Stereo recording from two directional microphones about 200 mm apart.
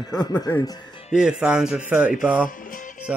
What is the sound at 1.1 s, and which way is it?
Speech, 5° right (ahead or behind).